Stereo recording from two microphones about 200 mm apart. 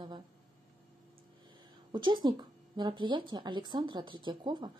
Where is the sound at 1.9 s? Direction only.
20° right (ahead or behind).